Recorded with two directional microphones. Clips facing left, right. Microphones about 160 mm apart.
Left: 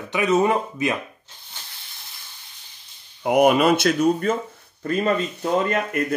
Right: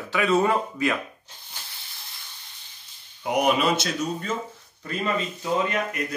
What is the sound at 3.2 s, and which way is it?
Speech, 50° left (ahead or behind).